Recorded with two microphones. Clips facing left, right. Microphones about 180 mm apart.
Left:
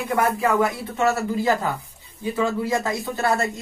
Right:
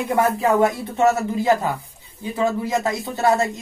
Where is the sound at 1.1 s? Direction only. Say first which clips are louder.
Right 3 dB; 20° right (ahead or behind).